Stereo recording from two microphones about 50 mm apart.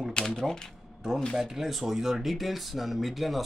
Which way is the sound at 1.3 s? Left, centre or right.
Centre.